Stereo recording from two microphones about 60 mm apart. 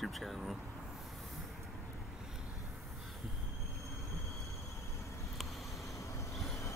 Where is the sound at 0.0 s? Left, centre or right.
Centre.